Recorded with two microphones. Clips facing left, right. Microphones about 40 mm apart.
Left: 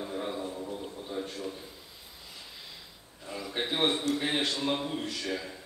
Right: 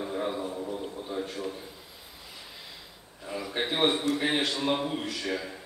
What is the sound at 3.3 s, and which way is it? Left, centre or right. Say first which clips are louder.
A man's voice: right 2 dB; centre.